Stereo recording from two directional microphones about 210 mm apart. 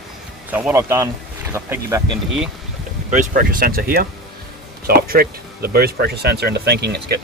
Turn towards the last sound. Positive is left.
turn(degrees=-50)  # may be behind; listen again after turning